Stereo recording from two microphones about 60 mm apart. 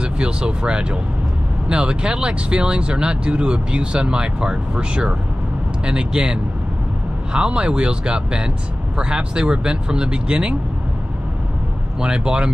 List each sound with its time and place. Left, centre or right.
0.0 s speech: centre
12.0 s speech: centre